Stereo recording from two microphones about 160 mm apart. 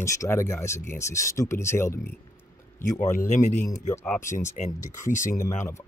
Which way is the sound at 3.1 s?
50° left (ahead or behind).